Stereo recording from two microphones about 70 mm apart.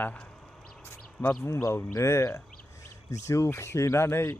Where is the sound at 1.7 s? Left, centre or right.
Left.